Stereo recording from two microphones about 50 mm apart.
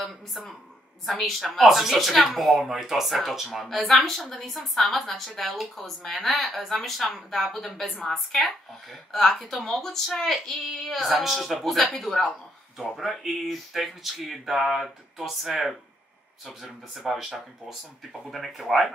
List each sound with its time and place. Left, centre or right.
0.0 s a woman's voice: centre